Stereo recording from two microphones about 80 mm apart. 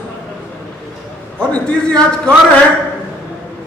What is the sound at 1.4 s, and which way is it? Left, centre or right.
Speech, centre.